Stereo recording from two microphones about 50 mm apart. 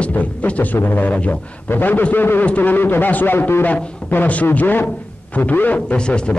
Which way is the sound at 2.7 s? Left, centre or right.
Left.